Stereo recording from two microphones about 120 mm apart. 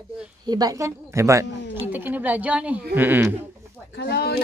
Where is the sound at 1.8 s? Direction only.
15° right (ahead or behind).